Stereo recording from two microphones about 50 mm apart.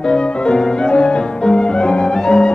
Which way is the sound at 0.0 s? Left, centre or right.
Centre.